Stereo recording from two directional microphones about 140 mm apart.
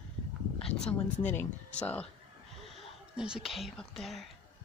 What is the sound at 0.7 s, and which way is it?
Speech, 5° left (ahead or behind).